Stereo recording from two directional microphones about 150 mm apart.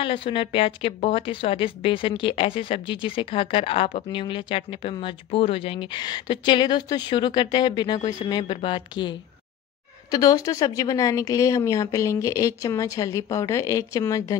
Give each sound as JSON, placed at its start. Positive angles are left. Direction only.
{"t": 0.0, "sound": "a woman's voice", "side_deg": 35}
{"t": 10.1, "sound": "speech", "side_deg": 25}